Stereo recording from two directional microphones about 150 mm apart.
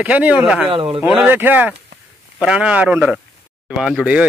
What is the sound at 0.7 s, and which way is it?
Speech, 35° right (ahead or behind).